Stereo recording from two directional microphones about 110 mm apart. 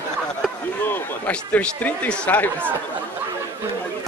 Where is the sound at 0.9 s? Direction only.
15° left (ahead or behind).